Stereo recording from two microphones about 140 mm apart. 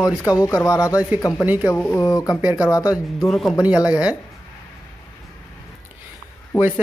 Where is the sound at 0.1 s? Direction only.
25° left (ahead or behind).